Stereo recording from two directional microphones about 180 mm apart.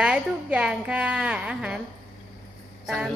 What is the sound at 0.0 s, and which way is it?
A woman's voice, 5° right (ahead or behind).